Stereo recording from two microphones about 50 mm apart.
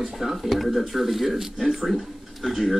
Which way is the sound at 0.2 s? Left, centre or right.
Centre.